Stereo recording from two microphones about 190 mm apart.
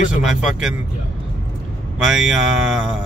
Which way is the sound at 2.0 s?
5° right (ahead or behind).